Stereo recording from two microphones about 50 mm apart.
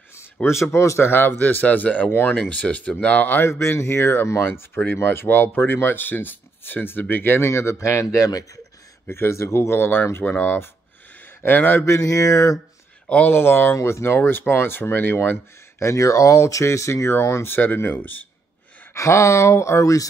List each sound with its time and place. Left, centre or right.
0.5 s speech: left
1.4 s speech: left
2.5 s speech: left
3.4 s speech: left
9.1 s speech: left
10.2 s speech: left
11.8 s mantra: left
13.3 s speech: left
15.8 s speech: left
17.7 s speech: left
18.9 s speech: left